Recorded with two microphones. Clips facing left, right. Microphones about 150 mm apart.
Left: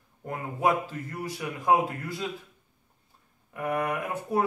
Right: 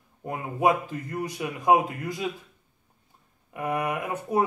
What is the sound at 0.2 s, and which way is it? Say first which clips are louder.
A man's voice: right 3 dB; 15° right (ahead or behind).